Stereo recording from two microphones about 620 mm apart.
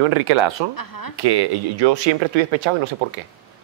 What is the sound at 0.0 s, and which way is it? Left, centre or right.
Speech, right.